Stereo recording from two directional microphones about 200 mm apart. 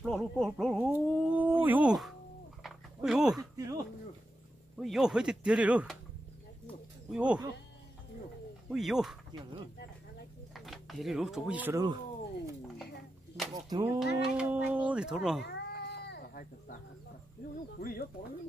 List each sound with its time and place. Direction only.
0.0 s speech: centre (ahead or behind)
1.6 s music: 10° right (ahead or behind)
2.6 s dog: centre (ahead or behind)
3.5 s a sound: 15° right (ahead or behind)
4.7 s speech: centre (ahead or behind)
7.1 s speech: 5° right (ahead or behind)
8.6 s speech: centre (ahead or behind)
10.5 s speech: centre (ahead or behind)
13.5 s speech: 20° right (ahead or behind)
13.9 s speech: 5° right (ahead or behind)
15.4 s cat: 60° left (ahead or behind)
17.7 s speech: 50° left (ahead or behind)